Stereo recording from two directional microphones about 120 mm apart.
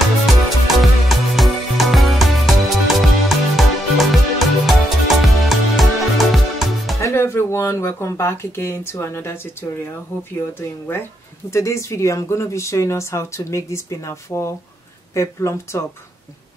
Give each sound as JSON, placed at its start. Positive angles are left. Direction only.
{"t": 0.3, "sound": "music", "side_deg": 0}
{"t": 7.0, "sound": "speech", "side_deg": 25}
{"t": 11.5, "sound": "speech", "side_deg": 25}